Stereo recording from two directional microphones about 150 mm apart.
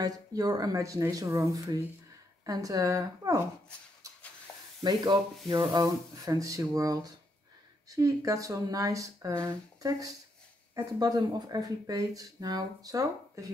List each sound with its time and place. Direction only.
0.0 s speech: 25° right (ahead or behind)
5.5 s speech: 30° right (ahead or behind)